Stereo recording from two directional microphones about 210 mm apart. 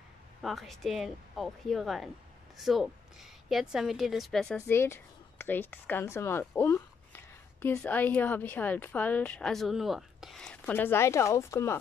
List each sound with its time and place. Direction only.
0.4 s a woman's voice: centre (ahead or behind)